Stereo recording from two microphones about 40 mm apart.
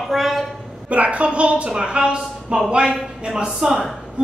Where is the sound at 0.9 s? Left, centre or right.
Right.